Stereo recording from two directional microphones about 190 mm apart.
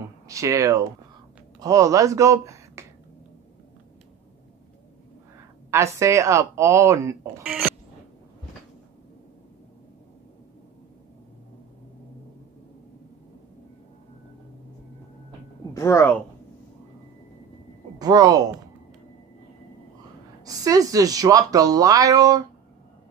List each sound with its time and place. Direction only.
0.3 s speech: 15° right (ahead or behind)
5.7 s speech: 15° right (ahead or behind)
7.4 s a sound: 5° right (ahead or behind)
15.7 s speech: 15° left (ahead or behind)
17.9 s speech: 20° right (ahead or behind)
20.4 s speech: 20° right (ahead or behind)